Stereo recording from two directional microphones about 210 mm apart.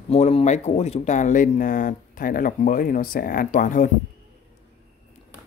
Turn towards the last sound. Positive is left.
turn(degrees=40)  # may be behind; listen again after turning